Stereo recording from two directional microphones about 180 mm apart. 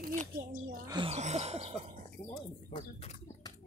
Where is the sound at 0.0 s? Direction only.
50° right (ahead or behind).